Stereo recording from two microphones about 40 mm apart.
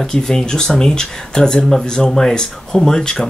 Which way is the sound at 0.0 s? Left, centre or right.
Centre.